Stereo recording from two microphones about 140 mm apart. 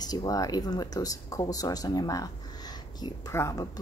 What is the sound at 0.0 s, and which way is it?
A woman's voice, 30° left (ahead or behind).